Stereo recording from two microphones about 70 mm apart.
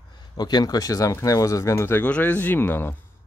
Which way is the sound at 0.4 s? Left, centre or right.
Left.